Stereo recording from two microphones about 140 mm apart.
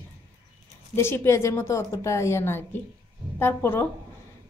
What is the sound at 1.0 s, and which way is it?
A woman's voice, 20° left (ahead or behind).